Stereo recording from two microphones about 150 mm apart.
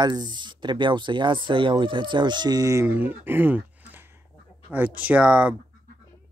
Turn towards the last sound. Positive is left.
turn(degrees=-10)  # may be behind; listen again after turning